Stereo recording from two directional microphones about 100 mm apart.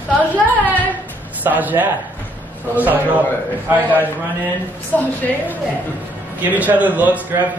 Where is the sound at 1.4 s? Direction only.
15° right (ahead or behind).